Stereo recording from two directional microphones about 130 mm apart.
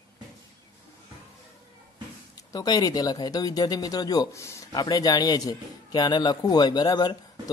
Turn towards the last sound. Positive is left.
turn(degrees=30)  # may be behind; listen again after turning